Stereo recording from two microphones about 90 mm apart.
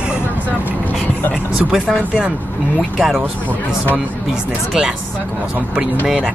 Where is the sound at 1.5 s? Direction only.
10° right (ahead or behind).